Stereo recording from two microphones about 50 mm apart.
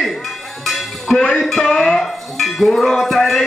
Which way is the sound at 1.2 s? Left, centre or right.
Centre.